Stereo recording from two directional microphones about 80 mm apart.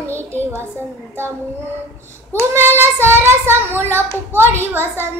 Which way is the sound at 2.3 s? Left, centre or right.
Right.